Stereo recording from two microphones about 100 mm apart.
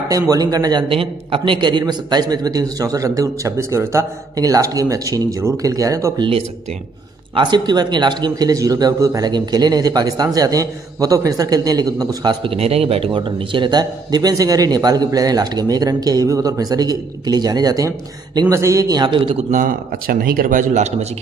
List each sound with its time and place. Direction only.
0.1 s a man's voice: 40° right (ahead or behind)
0.8 s a man's voice: 65° right (ahead or behind); by 6.1 s 35° right (ahead or behind)
6.1 s speech: 60° right (ahead or behind)
7.3 s a man's voice: 50° right (ahead or behind)
12.4 s a man's voice: 90° right; by 18.5 s 40° right (ahead or behind)
18.5 s a man's voice: 30° right (ahead or behind)